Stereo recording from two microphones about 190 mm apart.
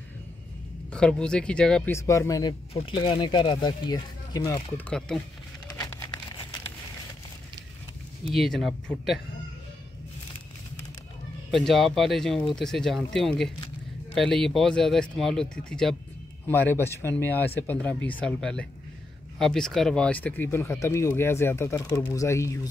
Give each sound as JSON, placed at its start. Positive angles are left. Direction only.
{"t": 0.9, "sound": "speech", "side_deg": 5}
{"t": 2.7, "sound": "speech", "side_deg": 30}
{"t": 4.7, "sound": "speech", "side_deg": 5}
{"t": 5.8, "sound": "crumpling", "side_deg": 15}
{"t": 8.4, "sound": "speech", "side_deg": 0}
{"t": 11.5, "sound": "speech", "side_deg": 0}